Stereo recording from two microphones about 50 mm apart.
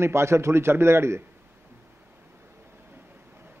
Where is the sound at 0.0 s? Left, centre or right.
Right.